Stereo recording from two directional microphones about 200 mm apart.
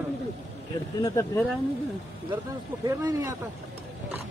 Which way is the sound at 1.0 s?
15° left (ahead or behind).